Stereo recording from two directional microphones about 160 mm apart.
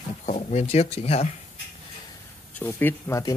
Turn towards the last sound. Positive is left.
turn(degrees=15)  # may be behind; listen again after turning